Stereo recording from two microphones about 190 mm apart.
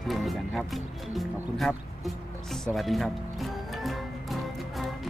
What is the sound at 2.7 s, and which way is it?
Speech, centre (ahead or behind).